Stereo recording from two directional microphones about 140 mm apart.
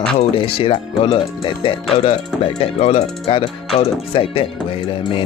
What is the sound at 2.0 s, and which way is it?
Speech, 50° left (ahead or behind).